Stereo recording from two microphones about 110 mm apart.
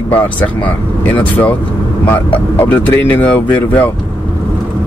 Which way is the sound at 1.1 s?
15° left (ahead or behind).